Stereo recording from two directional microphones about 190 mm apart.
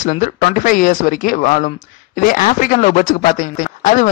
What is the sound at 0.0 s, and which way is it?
Speech, 40° left (ahead or behind).